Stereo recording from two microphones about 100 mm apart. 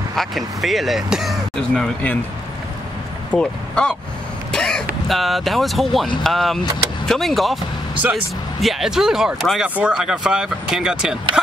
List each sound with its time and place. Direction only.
0.1 s speech: centre (ahead or behind)
3.3 s speech: 10° left (ahead or behind)
4.5 s throat clearing: 10° left (ahead or behind)
5.0 s speech: centre (ahead or behind)
8.0 s speech: 20° right (ahead or behind)
8.5 s speech: centre (ahead or behind)
11.4 s a sound: 10° right (ahead or behind)